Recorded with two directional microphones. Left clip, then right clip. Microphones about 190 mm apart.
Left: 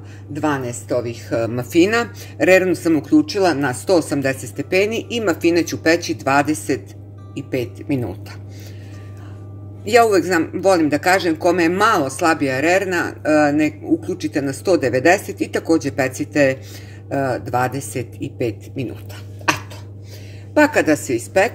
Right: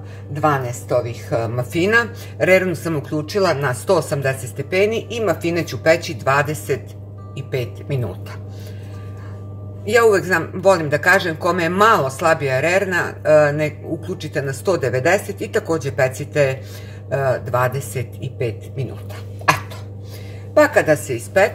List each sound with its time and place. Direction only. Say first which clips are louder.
0.3 s speech: right 3 dB; 45° left (ahead or behind)
9.8 s speech: even; 40° left (ahead or behind)
11.9 s speech: right 1 dB; 45° left (ahead or behind)
20.5 s speech: right 1 dB; 45° left (ahead or behind)